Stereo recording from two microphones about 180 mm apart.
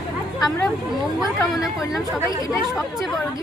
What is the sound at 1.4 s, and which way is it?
Speech, centre (ahead or behind).